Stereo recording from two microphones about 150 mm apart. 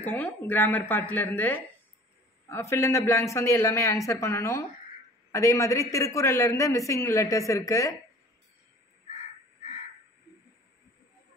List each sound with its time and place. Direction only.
0.0 s a man's voice: 10° left (ahead or behind)